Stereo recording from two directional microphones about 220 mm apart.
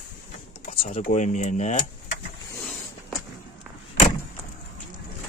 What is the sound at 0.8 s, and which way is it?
Speech, 35° left (ahead or behind).